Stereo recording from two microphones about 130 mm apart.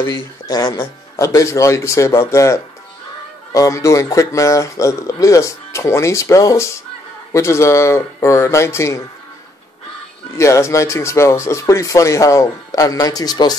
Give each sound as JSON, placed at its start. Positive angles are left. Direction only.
{"t": 0.0, "sound": "speech", "side_deg": 30}
{"t": 10.3, "sound": "speech", "side_deg": 20}